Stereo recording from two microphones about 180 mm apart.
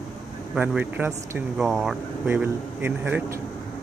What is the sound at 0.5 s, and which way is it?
Speech, 10° right (ahead or behind).